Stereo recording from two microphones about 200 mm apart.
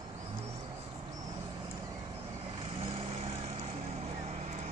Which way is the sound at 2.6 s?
30° right (ahead or behind).